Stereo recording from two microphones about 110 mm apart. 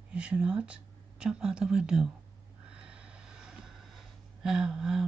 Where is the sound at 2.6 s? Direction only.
10° right (ahead or behind).